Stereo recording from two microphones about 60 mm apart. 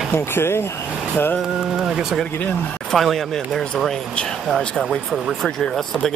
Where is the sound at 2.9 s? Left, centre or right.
Centre.